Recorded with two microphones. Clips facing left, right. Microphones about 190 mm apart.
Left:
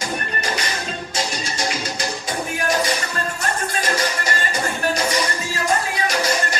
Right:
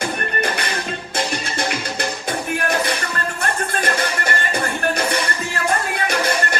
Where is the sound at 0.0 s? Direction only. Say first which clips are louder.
Right 3 dB; 60° right (ahead or behind).